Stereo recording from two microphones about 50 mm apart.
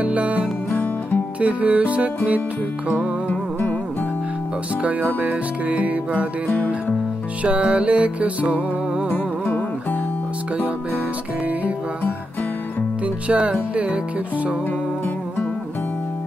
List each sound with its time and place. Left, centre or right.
0.0 s music: right
3.3 s music: left
4.8 s music: right
7.4 s music: right
9.1 s music: left
13.0 s music: right